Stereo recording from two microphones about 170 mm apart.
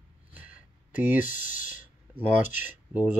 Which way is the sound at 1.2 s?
50° left (ahead or behind).